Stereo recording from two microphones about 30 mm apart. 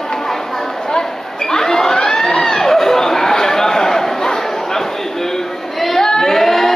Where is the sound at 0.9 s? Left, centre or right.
Centre.